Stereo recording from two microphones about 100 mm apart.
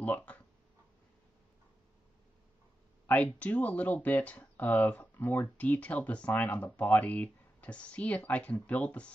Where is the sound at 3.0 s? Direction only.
15° left (ahead or behind).